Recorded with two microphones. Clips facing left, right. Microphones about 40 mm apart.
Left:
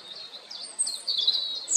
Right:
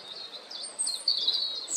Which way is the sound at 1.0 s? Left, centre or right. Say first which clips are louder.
Left 2 dB; left.